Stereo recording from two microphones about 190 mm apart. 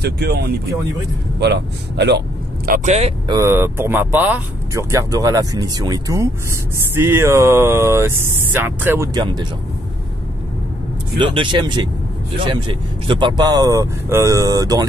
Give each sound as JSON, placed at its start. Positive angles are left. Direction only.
{"t": 0.0, "sound": "speech", "side_deg": -60}
{"t": 3.3, "sound": "speech", "side_deg": -15}
{"t": 11.1, "sound": "speech", "side_deg": -25}